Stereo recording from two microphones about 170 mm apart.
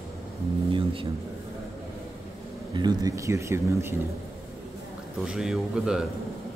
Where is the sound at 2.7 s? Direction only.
25° right (ahead or behind).